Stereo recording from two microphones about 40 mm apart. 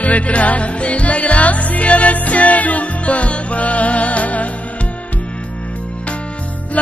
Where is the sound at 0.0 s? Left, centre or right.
Left.